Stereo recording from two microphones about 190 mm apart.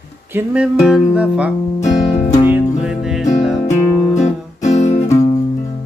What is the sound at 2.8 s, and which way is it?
Music, 5° right (ahead or behind).